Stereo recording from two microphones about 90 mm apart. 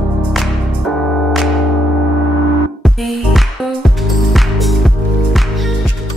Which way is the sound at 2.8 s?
Centre (ahead or behind).